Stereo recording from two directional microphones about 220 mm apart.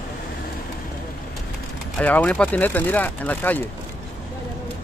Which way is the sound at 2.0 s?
5° left (ahead or behind).